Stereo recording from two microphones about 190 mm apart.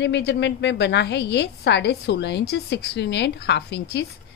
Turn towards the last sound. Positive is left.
turn(degrees=65)  # may be behind; listen again after turning